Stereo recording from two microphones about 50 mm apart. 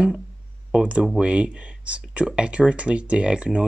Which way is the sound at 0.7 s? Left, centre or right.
Right.